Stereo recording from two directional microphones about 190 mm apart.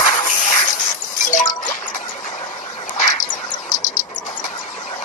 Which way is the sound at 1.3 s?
40° left (ahead or behind).